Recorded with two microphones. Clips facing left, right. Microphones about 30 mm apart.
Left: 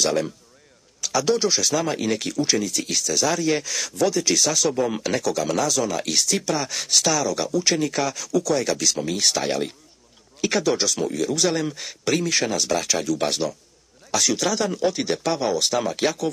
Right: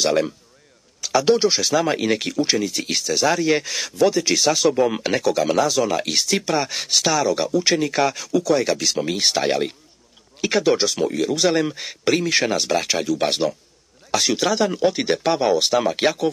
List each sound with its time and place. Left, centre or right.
0.0 s speech: right